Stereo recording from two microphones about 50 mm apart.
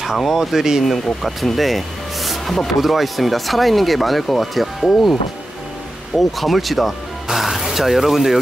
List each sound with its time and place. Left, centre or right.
0.0 s speech: centre
1.2 s speech: centre
6.1 s speech: centre